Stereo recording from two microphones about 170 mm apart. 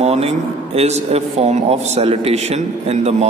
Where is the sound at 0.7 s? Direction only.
40° right (ahead or behind).